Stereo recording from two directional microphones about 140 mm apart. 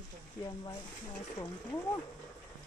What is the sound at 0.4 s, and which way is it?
Speech, 25° left (ahead or behind).